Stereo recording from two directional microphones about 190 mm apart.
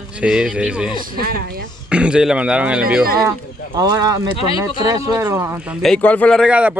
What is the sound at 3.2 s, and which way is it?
Speech, 20° right (ahead or behind).